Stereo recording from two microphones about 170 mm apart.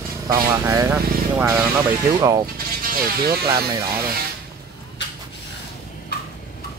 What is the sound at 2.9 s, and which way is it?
Speech, 60° right (ahead or behind).